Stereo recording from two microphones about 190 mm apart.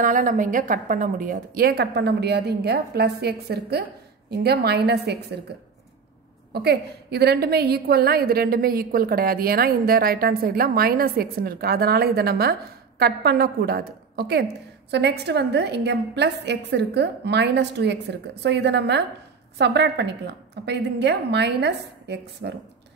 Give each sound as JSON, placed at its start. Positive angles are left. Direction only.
{"t": 0.0, "sound": "a woman's voice", "side_deg": -40}
{"t": 6.5, "sound": "a woman's voice", "side_deg": -60}